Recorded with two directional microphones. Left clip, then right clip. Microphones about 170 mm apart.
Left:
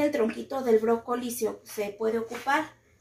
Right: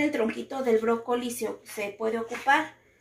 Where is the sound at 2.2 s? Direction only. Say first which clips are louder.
Right 3 dB; 10° left (ahead or behind).